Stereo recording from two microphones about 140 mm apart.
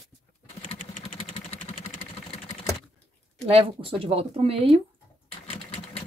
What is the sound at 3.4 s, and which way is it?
Speech, 45° right (ahead or behind).